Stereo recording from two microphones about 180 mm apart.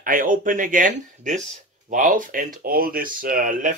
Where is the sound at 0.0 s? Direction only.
50° right (ahead or behind).